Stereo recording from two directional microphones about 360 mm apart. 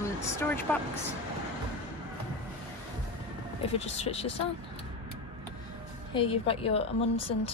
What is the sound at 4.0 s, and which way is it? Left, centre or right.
Speech, centre.